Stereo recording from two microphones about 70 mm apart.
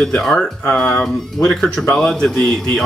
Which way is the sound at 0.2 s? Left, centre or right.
Centre.